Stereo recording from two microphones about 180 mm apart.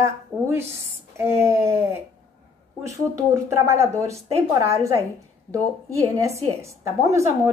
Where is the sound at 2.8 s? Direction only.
15° right (ahead or behind).